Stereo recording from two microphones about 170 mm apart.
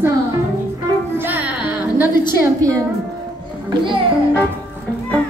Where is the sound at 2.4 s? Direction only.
20° right (ahead or behind).